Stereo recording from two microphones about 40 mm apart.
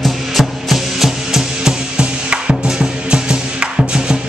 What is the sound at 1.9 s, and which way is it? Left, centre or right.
Music, right.